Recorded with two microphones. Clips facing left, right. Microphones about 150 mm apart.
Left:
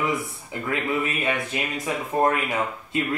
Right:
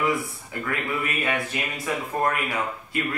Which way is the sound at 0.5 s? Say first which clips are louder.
Left 3 dB; 20° left (ahead or behind).